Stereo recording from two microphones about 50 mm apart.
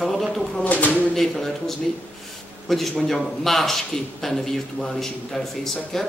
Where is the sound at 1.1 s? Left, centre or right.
Centre.